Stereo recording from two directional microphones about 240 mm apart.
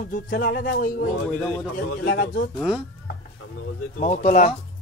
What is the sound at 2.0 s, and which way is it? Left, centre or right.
Speech, left.